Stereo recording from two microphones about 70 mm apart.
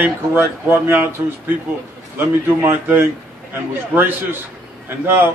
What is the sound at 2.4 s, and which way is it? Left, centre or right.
Speech, right.